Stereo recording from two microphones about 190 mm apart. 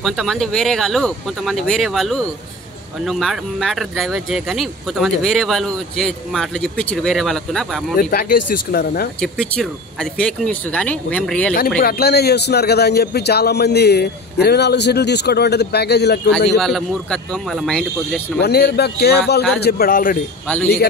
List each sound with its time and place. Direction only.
0.0 s speech: centre (ahead or behind)
8.0 s speech: 50° left (ahead or behind)
9.2 s speech: centre (ahead or behind)
11.8 s a man's voice: 55° left (ahead or behind)
16.3 s speech: 5° left (ahead or behind)
18.4 s a man's voice: 60° left (ahead or behind)
20.4 s a man's voice: 5° left (ahead or behind)